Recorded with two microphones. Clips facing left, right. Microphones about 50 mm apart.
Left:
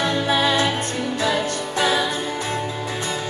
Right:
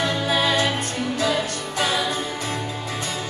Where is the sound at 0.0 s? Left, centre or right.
Left.